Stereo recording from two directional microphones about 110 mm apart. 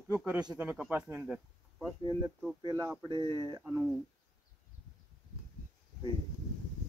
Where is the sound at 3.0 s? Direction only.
45° right (ahead or behind).